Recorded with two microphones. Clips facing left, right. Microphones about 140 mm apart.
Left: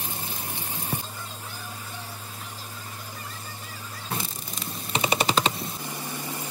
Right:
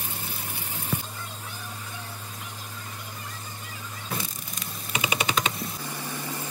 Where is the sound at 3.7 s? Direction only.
10° left (ahead or behind).